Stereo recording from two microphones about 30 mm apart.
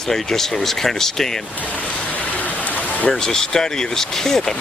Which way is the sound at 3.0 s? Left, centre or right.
Left.